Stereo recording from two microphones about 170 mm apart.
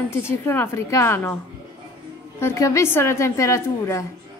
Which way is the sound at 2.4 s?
20° left (ahead or behind).